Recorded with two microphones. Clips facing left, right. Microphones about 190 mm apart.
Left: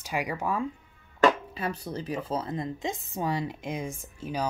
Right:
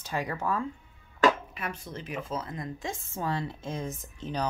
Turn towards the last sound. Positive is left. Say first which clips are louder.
# left 1 dB
turn(degrees=10)  # may be behind; listen again after turning